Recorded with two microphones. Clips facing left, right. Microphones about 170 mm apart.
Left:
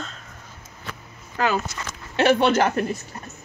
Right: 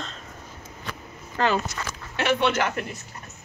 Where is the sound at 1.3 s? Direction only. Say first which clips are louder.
Even; 5° left (ahead or behind).